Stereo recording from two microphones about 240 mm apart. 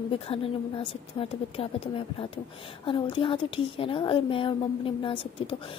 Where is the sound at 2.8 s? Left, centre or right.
Left.